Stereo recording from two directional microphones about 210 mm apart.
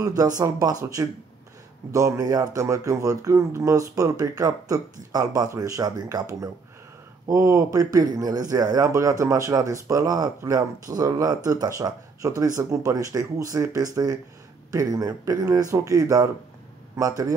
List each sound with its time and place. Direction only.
0.0 s speech: 15° right (ahead or behind)